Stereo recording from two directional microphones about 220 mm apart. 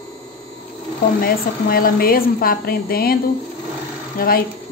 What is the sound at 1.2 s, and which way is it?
Speech, 45° left (ahead or behind).